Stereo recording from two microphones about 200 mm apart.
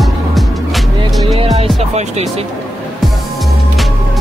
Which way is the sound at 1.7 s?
35° right (ahead or behind).